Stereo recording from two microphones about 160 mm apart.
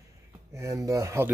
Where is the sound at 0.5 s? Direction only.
20° right (ahead or behind).